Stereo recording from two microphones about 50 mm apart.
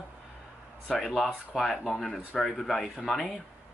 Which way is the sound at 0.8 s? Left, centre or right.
Centre.